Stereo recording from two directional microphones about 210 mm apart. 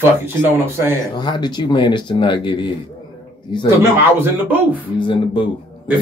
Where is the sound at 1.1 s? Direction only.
20° left (ahead or behind).